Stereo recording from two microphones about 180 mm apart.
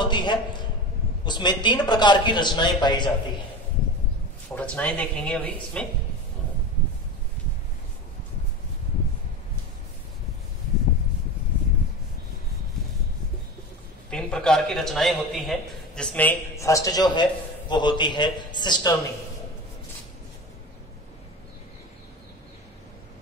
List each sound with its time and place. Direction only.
0.0 s a man's voice: 25° left (ahead or behind)
4.6 s a man's voice: 5° left (ahead or behind)
14.1 s a man's voice: 5° left (ahead or behind); by 18.9 s 25° left (ahead or behind)